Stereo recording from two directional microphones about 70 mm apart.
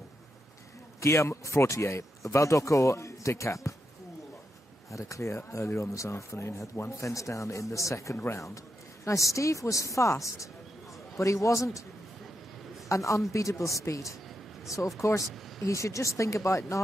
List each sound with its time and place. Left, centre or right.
1.0 s speech: left
4.9 s speech: left
12.8 s speech: left